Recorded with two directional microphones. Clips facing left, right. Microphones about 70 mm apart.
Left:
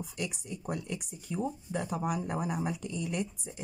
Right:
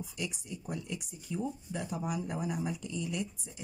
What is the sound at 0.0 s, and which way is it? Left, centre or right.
Speech, left.